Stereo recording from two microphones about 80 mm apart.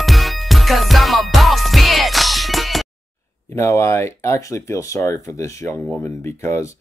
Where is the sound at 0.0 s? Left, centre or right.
Centre.